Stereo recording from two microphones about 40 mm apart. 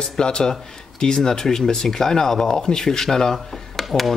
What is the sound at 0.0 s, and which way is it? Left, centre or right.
Speech, left.